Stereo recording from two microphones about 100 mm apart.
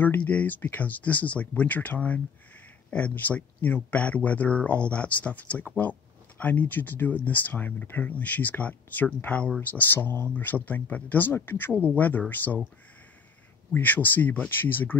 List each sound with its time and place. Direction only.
0.0 s speech: 15° left (ahead or behind)
13.7 s speech: 15° left (ahead or behind)